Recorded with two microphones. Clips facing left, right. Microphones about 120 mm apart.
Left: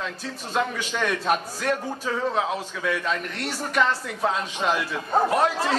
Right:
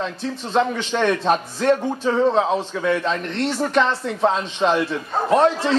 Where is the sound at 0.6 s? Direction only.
30° right (ahead or behind).